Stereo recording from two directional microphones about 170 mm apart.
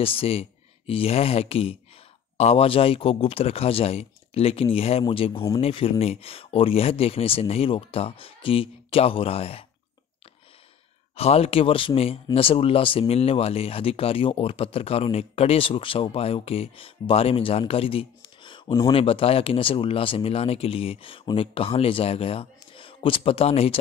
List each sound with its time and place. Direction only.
0.0 s speech: 35° left (ahead or behind)
11.1 s speech: 35° left (ahead or behind)